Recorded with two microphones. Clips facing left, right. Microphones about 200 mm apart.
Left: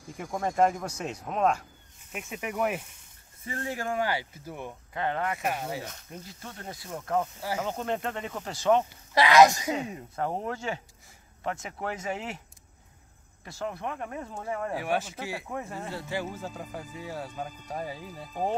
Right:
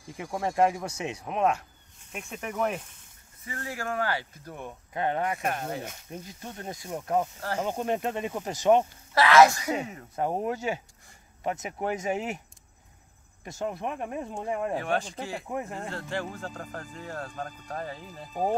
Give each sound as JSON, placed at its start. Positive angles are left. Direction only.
{"t": 0.2, "sound": "speech", "side_deg": -5}
{"t": 3.4, "sound": "speech", "side_deg": 25}
{"t": 4.9, "sound": "speech", "side_deg": -20}
{"t": 5.4, "sound": "speech", "side_deg": 5}
{"t": 5.9, "sound": "speech", "side_deg": -15}
{"t": 7.3, "sound": "speech", "side_deg": 10}
{"t": 7.6, "sound": "speech", "side_deg": -15}
{"t": 9.1, "sound": "speech", "side_deg": 15}
{"t": 10.1, "sound": "speech", "side_deg": -15}
{"t": 13.4, "sound": "speech", "side_deg": -20}
{"t": 14.8, "sound": "speech", "side_deg": 5}
{"t": 18.3, "sound": "speech", "side_deg": -10}